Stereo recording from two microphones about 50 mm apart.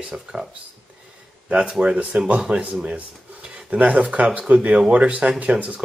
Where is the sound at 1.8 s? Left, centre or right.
Right.